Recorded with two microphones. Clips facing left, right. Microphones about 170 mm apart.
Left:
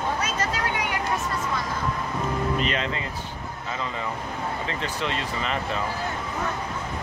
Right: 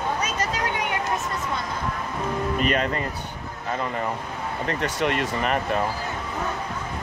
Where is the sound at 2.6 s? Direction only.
50° right (ahead or behind).